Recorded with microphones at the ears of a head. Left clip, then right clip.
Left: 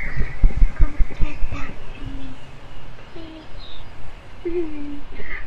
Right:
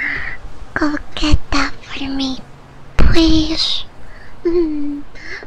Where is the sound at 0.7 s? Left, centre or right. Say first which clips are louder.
Right 17 dB; right.